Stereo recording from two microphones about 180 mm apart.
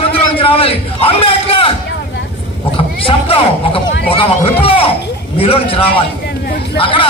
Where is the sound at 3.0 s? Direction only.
30° left (ahead or behind).